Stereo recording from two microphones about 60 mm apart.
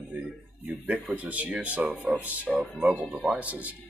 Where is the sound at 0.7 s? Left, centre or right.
Centre.